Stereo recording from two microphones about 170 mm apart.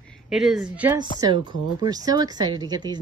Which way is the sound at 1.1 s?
25° right (ahead or behind).